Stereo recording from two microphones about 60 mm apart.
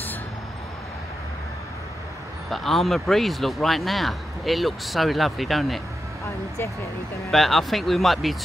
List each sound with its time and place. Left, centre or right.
2.5 s speech: centre
6.2 s speech: left
7.2 s speech: centre